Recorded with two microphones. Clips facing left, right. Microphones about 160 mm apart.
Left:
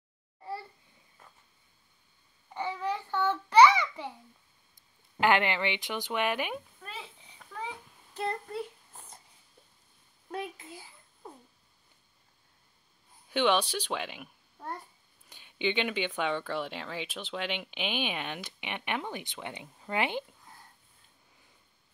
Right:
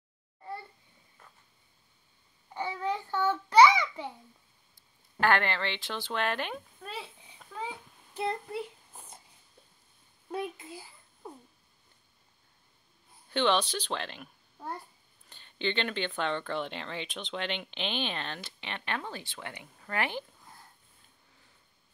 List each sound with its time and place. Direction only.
2.6 s child singing: 15° right (ahead or behind)
5.2 s speech: 15° left (ahead or behind)
6.8 s a sound: 5° right (ahead or behind)
7.5 s a sound: 15° right (ahead or behind)
10.3 s a child's voice: centre (ahead or behind)
13.3 s speech: 10° left (ahead or behind)